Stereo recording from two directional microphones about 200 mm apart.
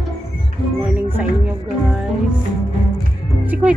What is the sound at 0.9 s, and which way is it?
Music, 5° right (ahead or behind).